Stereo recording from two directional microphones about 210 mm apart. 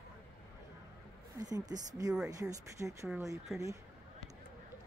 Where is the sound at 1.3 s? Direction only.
15° right (ahead or behind).